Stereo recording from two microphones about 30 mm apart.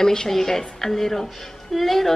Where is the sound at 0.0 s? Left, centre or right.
Centre.